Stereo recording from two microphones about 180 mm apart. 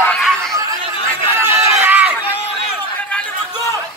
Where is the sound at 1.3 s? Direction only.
10° right (ahead or behind).